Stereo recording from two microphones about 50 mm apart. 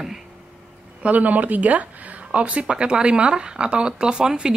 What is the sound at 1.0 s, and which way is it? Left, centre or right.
A woman's voice, right.